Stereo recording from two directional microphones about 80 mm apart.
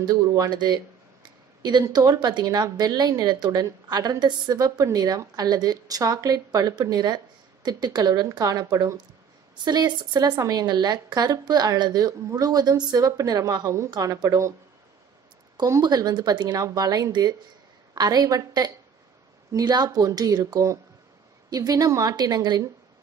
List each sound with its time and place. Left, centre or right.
0.0 s a woman's voice: right
9.7 s speech: right
10.5 s a woman's voice: right
15.6 s a woman's voice: right